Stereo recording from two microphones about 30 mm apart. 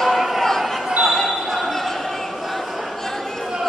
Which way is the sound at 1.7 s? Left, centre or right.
Centre.